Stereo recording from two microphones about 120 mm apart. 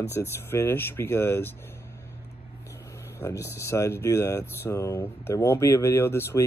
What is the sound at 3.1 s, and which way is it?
Speech, 25° left (ahead or behind).